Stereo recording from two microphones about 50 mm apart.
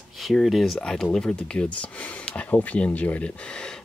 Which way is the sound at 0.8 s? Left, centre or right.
Centre.